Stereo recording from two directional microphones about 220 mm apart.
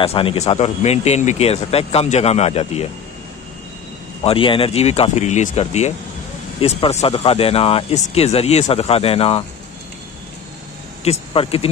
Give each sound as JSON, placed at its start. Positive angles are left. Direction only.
{"t": 0.0, "sound": "speech", "side_deg": 25}
{"t": 4.2, "sound": "speech", "side_deg": 25}
{"t": 11.1, "sound": "speech", "side_deg": 25}